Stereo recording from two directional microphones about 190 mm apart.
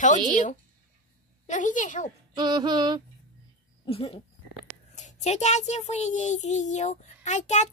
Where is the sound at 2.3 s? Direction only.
20° right (ahead or behind).